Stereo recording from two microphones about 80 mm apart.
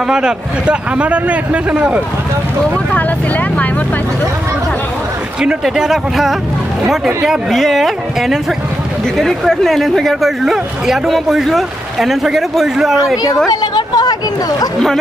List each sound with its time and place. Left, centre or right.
0.1 s a man's voice: centre
2.6 s speech: centre
5.4 s speech: centre
13.5 s a sound: left